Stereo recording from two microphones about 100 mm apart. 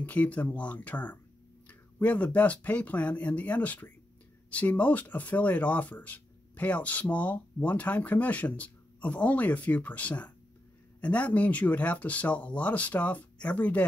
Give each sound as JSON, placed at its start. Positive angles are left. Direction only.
{"t": 0.0, "sound": "speech", "side_deg": 15}